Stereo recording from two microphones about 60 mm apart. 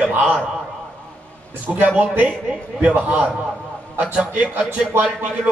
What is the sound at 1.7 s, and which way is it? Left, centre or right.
A man's voice, right.